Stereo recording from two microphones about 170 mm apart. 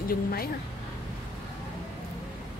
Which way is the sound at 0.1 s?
60° left (ahead or behind).